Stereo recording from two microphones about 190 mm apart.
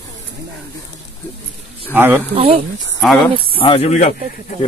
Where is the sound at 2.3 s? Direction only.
30° right (ahead or behind).